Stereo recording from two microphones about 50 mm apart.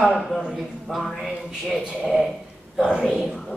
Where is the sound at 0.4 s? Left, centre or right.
Centre.